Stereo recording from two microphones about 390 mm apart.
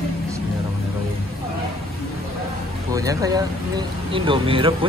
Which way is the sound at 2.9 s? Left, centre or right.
Centre.